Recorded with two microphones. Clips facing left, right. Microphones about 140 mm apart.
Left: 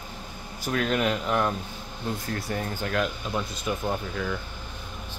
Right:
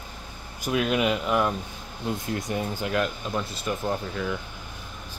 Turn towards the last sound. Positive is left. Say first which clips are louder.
# right 1 dB
turn(degrees=-5)  # may be behind; listen again after turning